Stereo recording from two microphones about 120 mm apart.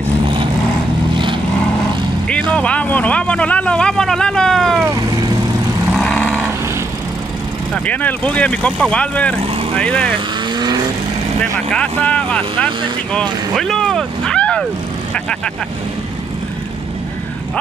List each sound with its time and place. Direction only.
2.5 s a sound: 10° left (ahead or behind)
5.9 s vehicle: 10° left (ahead or behind)
7.7 s speech: 10° left (ahead or behind)
10.5 s vehicle: 35° right (ahead or behind)
11.7 s speech: 10° left (ahead or behind)